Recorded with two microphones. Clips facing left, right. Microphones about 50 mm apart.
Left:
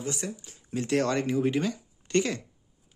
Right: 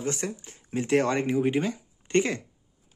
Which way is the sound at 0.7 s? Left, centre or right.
Right.